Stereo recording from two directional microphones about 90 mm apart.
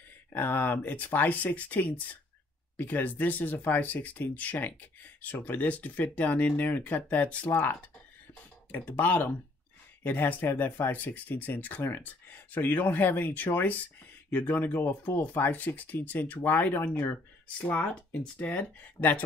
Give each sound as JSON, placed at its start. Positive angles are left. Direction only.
{"t": 0.3, "sound": "speech", "side_deg": 20}